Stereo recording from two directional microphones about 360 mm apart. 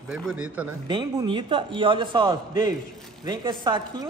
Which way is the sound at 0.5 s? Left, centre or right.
Centre.